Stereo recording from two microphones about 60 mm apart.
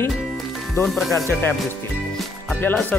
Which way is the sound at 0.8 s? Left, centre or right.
Centre.